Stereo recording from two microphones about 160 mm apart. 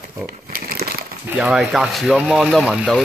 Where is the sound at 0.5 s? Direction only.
65° right (ahead or behind).